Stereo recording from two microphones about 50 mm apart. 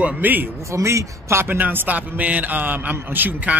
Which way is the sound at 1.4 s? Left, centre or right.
Right.